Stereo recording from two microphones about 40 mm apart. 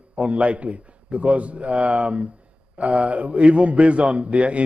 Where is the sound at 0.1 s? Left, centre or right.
Right.